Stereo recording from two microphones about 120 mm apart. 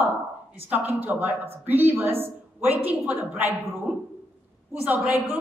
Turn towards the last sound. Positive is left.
turn(degrees=-15)  # may be behind; listen again after turning